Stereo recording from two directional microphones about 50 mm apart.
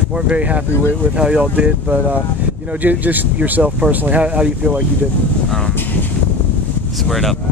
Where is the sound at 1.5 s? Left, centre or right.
Right.